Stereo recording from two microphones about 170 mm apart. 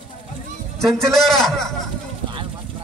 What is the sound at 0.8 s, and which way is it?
Speech, centre (ahead or behind).